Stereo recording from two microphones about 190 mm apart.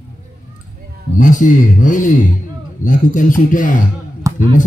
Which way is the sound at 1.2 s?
45° left (ahead or behind).